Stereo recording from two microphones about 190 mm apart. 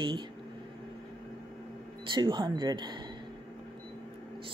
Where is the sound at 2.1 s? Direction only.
25° right (ahead or behind).